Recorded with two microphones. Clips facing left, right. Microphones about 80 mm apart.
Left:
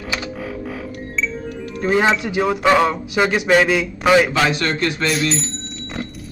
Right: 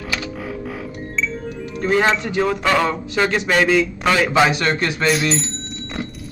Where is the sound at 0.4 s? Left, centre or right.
Centre.